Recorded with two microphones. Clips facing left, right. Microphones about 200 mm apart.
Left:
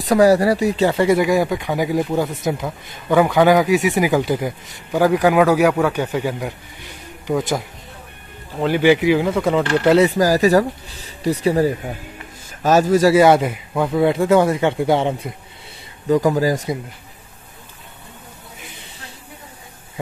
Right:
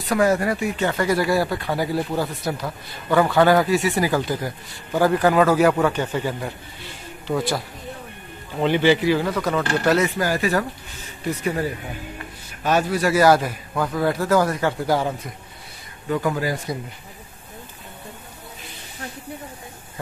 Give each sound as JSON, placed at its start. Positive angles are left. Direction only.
{"t": 0.0, "sound": "speech", "side_deg": 35}
{"t": 8.5, "sound": "speech", "side_deg": 5}
{"t": 9.4, "sound": "speech", "side_deg": 25}
{"t": 13.1, "sound": "speech", "side_deg": 25}
{"t": 16.1, "sound": "speech", "side_deg": 35}